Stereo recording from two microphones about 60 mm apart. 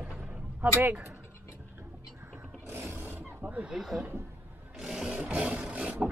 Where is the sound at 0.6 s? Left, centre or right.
Right.